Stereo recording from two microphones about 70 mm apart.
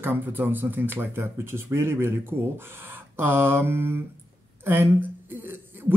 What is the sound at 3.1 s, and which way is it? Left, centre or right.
Speech, right.